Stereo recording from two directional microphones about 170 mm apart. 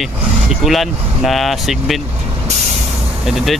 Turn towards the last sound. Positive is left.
turn(degrees=0)  # may be behind; listen again after turning